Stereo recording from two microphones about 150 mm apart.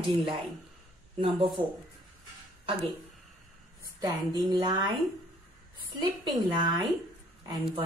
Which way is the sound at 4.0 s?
25° right (ahead or behind).